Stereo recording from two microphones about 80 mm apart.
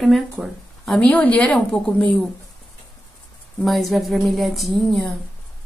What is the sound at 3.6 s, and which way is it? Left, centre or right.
Speech, centre.